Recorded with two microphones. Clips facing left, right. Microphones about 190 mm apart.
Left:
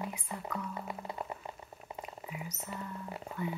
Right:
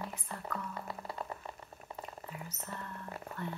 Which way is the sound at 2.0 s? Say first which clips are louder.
Left 2 dB; 10° left (ahead or behind).